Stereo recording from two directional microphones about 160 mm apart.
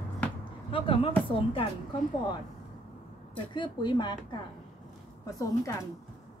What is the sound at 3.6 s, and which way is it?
A woman's voice, 30° left (ahead or behind).